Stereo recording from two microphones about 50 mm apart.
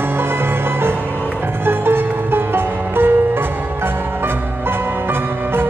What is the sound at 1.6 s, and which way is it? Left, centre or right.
Music, right.